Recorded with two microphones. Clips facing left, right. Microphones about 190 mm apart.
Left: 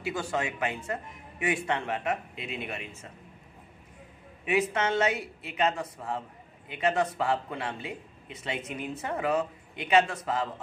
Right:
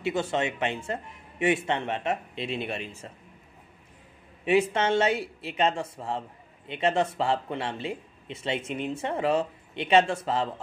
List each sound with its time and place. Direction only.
0.0 s speech: 25° right (ahead or behind)
4.5 s speech: 30° right (ahead or behind)